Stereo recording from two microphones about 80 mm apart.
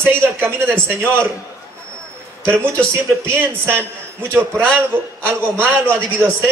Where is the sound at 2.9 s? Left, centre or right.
Right.